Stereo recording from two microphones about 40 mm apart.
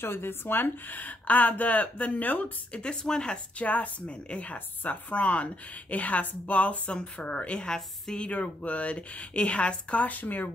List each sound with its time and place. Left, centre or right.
0.0 s speech: left
2.7 s a woman's voice: left
3.5 s a woman's voice: left
6.9 s a woman's voice: left
8.3 s a woman's voice: left
10.0 s speech: left